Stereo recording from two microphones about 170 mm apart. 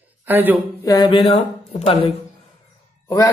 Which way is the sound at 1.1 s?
35° left (ahead or behind).